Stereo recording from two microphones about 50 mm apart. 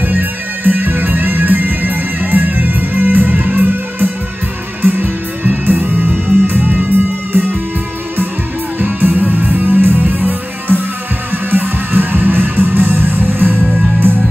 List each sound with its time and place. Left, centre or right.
0.0 s music: right
8.7 s music: right